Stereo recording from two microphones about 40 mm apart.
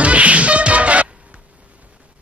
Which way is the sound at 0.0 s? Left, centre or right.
Right.